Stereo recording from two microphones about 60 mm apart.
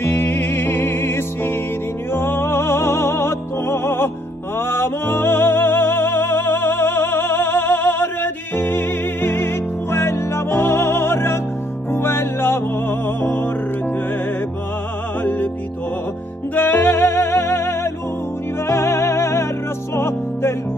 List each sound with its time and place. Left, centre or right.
0.1 s music: left
0.5 s music: left
15.2 s music: left
16.5 s music: left